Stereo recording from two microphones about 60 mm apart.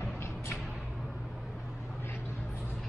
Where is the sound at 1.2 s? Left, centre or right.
Centre.